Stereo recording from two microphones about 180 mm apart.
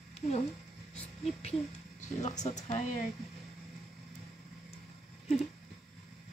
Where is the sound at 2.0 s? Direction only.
40° left (ahead or behind).